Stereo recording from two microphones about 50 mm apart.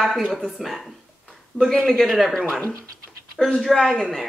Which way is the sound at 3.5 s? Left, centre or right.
Centre.